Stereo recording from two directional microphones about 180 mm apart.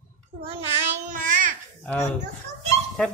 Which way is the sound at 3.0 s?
5° left (ahead or behind).